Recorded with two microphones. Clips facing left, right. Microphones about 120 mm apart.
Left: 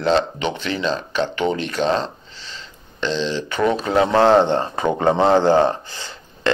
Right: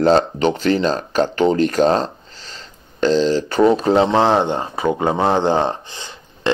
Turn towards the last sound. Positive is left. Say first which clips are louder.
# left 1 dB
turn(degrees=-20)  # may be behind; listen again after turning